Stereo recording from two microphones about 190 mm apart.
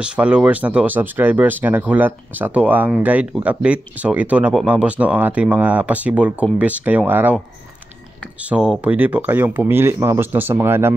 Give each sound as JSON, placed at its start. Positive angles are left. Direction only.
{"t": 0.0, "sound": "speech", "side_deg": -5}
{"t": 8.4, "sound": "speech", "side_deg": -5}